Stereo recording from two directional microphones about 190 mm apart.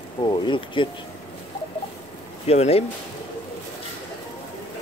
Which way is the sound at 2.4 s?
35° left (ahead or behind).